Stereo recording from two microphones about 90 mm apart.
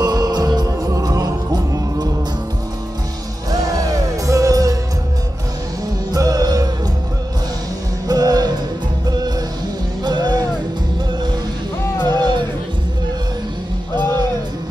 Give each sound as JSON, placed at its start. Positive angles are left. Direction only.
{"t": 0.0, "sound": "music", "side_deg": -50}
{"t": 3.7, "sound": "music", "side_deg": -40}
{"t": 6.1, "sound": "music", "side_deg": -45}
{"t": 8.1, "sound": "music", "side_deg": -45}
{"t": 10.0, "sound": "music", "side_deg": -50}
{"t": 11.8, "sound": "music", "side_deg": 25}
{"t": 13.9, "sound": "music", "side_deg": 25}